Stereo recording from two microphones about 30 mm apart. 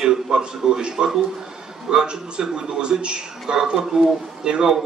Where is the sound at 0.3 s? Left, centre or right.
Right.